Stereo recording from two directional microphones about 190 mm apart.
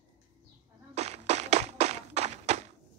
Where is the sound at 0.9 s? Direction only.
35° right (ahead or behind).